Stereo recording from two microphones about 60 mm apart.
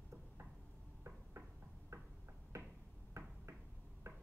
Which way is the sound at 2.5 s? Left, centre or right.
Right.